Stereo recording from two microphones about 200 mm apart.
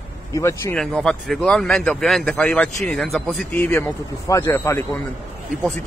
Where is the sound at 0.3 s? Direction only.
15° left (ahead or behind).